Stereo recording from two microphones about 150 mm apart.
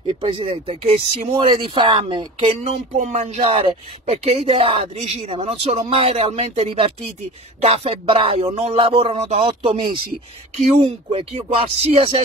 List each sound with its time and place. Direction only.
0.2 s speech: 35° right (ahead or behind)
2.6 s speech: 50° right (ahead or behind)